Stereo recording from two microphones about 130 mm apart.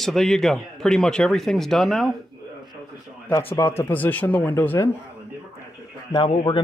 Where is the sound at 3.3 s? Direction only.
20° left (ahead or behind).